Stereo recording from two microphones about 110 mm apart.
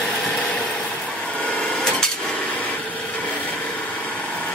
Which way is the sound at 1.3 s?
10° left (ahead or behind).